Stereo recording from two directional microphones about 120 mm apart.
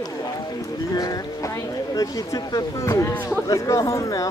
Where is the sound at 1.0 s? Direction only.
30° left (ahead or behind).